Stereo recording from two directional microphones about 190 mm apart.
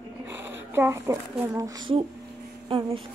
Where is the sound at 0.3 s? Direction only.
10° right (ahead or behind).